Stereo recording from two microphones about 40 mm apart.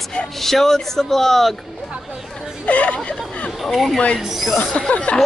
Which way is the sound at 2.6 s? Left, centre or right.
Left.